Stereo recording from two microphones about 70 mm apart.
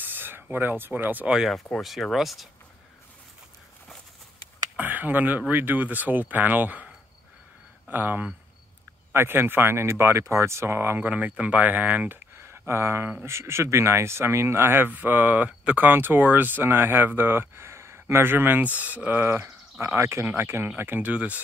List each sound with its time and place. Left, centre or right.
0.0 s speech: right
1.3 s speech: centre
4.7 s speech: right
7.9 s speech: right
12.4 s speech: right